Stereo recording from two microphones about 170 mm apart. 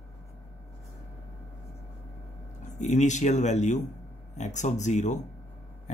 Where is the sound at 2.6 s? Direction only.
45° left (ahead or behind).